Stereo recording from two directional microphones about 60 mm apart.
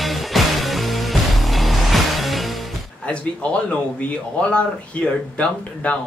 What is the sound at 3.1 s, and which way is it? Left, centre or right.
A man's voice, centre.